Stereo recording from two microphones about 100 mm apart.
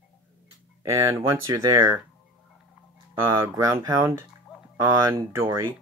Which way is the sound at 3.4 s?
30° right (ahead or behind).